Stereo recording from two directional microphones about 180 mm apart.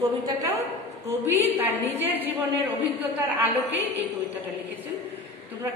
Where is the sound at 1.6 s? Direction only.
10° right (ahead or behind).